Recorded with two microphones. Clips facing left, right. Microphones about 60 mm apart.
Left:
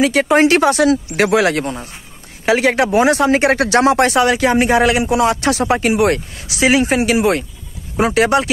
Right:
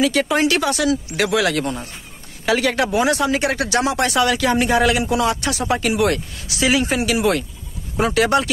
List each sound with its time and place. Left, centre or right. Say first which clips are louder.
0.0 s speech: left 5 dB; left
4.2 s speech: left 4 dB; left
5.4 s speech: left 7 dB; left
5.7 s speech: left 2 dB; left